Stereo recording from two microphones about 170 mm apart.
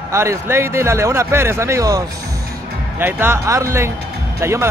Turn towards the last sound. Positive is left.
turn(degrees=-15)  # may be behind; listen again after turning